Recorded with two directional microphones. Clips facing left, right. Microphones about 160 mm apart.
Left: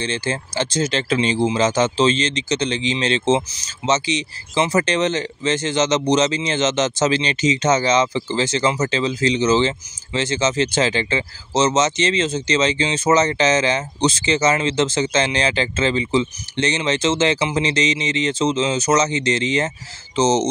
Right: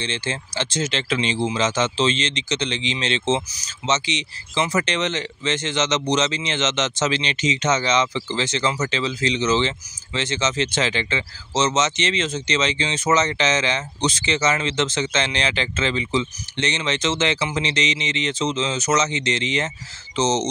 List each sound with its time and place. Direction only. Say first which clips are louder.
0.0 s speech: left 4 dB; 40° left (ahead or behind)